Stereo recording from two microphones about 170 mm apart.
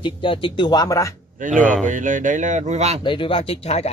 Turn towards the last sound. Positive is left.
turn(degrees=35)  # may be behind; listen again after turning